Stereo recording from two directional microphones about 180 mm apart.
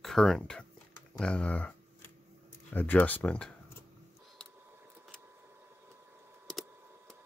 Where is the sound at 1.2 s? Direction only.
5° left (ahead or behind).